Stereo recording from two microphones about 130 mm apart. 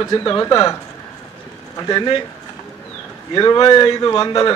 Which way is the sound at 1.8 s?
35° left (ahead or behind).